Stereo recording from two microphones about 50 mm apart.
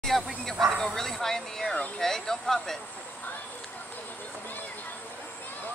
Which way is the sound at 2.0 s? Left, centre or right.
Centre.